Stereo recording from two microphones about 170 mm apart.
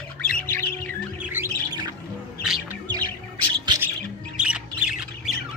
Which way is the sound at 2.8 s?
25° right (ahead or behind).